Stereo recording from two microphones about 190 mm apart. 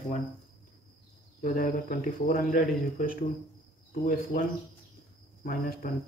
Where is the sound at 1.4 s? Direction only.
45° left (ahead or behind).